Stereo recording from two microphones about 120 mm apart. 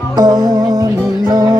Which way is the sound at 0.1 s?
35° right (ahead or behind).